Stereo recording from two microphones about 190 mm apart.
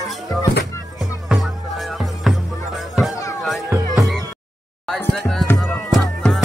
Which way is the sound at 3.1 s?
15° left (ahead or behind).